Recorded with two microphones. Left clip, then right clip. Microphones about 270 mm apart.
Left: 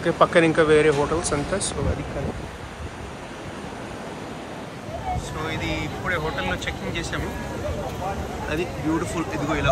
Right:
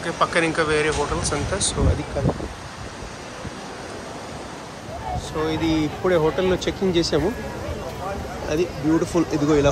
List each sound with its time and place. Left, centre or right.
0.0 s speech: centre
5.4 s speech: centre
8.5 s speech: centre